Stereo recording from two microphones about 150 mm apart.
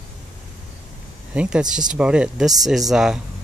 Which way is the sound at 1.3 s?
5° right (ahead or behind).